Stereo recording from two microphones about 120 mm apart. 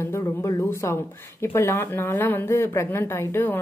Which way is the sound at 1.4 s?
20° left (ahead or behind).